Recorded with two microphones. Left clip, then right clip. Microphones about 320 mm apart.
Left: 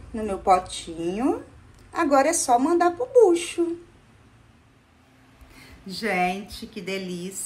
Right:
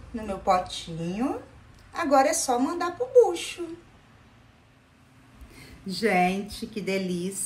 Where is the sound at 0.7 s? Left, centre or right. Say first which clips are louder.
Left 5 dB; centre.